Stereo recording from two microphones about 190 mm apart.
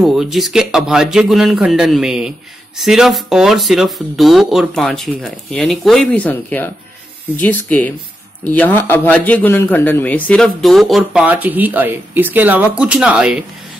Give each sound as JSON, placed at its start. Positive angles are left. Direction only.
{"t": 0.0, "sound": "a man's voice", "side_deg": 0}